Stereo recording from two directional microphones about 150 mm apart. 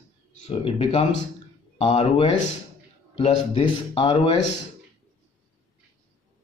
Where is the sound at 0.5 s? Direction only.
35° left (ahead or behind).